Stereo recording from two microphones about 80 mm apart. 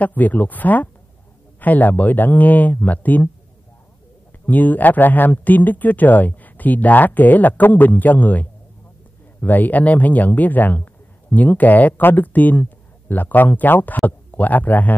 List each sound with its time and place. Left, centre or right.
0.0 s speech: left
4.5 s speech: left